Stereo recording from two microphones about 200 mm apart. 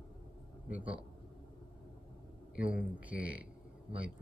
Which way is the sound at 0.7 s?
5° right (ahead or behind).